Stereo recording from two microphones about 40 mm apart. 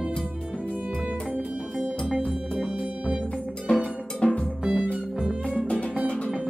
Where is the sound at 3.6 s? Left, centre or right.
Left.